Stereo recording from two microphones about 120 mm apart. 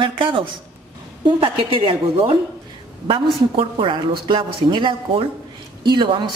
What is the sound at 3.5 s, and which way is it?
A woman's voice, 50° right (ahead or behind).